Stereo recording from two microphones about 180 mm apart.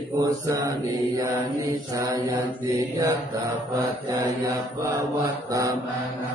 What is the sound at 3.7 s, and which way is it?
Mantra, 15° right (ahead or behind).